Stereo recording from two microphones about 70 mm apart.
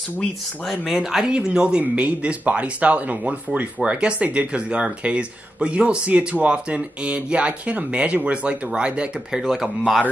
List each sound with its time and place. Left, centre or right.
0.2 s speech: centre